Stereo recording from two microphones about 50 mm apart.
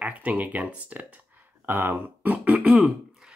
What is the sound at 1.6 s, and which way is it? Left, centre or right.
Speech, right.